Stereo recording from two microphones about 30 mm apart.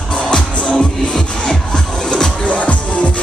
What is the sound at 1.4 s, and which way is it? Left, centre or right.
Music, left.